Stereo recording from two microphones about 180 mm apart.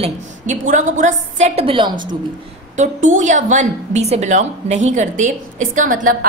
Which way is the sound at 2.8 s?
45° right (ahead or behind).